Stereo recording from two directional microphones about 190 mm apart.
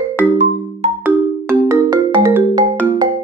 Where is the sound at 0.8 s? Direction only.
35° right (ahead or behind).